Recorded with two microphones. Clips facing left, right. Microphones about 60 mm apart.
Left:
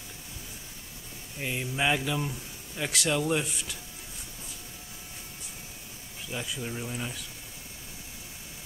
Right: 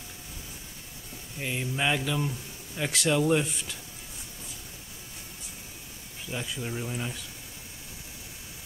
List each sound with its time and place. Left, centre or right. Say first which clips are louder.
1.4 s speech: even; centre
6.3 s speech: right 1 dB; centre